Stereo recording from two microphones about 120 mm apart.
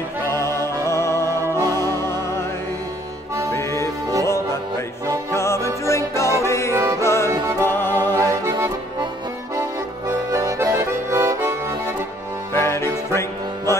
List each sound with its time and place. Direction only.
0.8 s music: 25° left (ahead or behind)
1.3 s music: 30° right (ahead or behind)
1.7 s music: 25° left (ahead or behind)
3.5 s music: 25° left (ahead or behind)
5.3 s music: 25° left (ahead or behind)
6.7 s music: 25° right (ahead or behind)
7.0 s music: 20° left (ahead or behind)
8.2 s music: 20° right (ahead or behind)
9.6 s accordion: 25° right (ahead or behind)
12.5 s music: 20° left (ahead or behind)